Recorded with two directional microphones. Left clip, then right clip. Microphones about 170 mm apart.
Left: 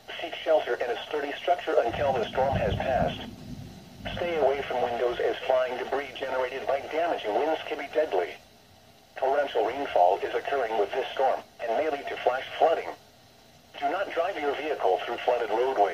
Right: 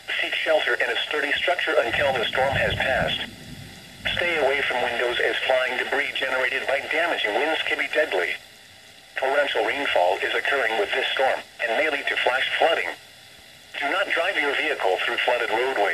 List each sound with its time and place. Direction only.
0.1 s speech: 20° right (ahead or behind)